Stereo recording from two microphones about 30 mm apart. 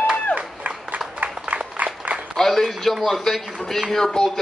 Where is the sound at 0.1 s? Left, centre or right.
Right.